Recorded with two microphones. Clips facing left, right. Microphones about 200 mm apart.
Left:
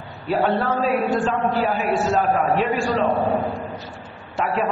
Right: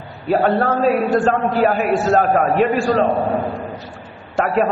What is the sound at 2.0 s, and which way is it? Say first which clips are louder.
Speech: right 5 dB; 65° right (ahead or behind).